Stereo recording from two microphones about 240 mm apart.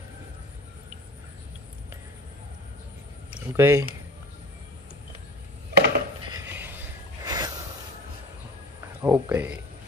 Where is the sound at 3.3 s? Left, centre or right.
Centre.